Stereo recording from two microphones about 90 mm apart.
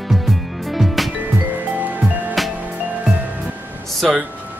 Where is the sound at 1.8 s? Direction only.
15° right (ahead or behind).